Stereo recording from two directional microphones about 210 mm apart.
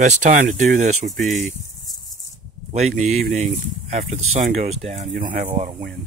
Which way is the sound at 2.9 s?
35° right (ahead or behind).